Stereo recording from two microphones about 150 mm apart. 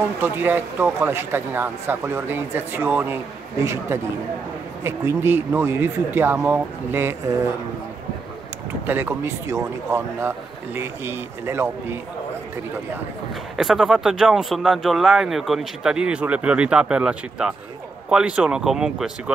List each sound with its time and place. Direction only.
0.2 s a man's voice: 15° right (ahead or behind)
8.8 s speech: 15° right (ahead or behind)
13.6 s speech: centre (ahead or behind)